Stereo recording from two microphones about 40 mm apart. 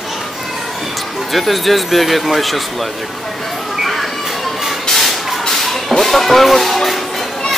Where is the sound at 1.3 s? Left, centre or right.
Centre.